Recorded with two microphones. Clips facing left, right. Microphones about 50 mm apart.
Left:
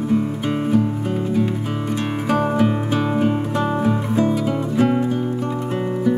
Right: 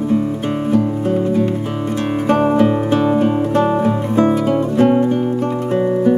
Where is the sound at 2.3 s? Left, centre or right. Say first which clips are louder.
Right 4 dB; centre.